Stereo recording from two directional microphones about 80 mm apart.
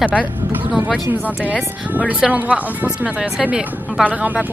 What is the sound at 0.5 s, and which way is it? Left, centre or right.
Speech, centre.